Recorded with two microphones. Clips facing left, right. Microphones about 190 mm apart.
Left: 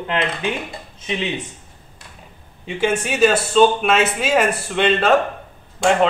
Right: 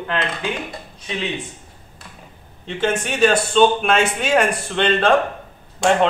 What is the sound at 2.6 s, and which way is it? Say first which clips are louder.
Speech: left 1 dB; 10° left (ahead or behind).